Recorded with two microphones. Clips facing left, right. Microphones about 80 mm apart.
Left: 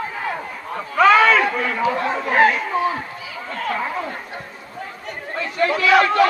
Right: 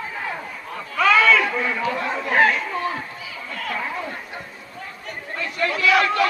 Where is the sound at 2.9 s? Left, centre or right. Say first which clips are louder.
Left 3 dB; left.